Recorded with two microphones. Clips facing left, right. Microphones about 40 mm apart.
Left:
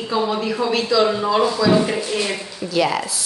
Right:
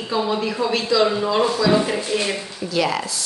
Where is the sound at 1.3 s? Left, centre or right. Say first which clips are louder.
Left 1 dB; centre.